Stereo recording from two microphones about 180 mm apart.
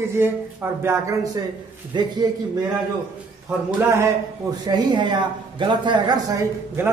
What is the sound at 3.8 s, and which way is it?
A man's voice, 15° right (ahead or behind).